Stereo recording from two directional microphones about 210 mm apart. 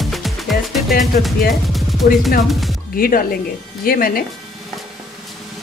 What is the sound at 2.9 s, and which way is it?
Speech, 45° left (ahead or behind).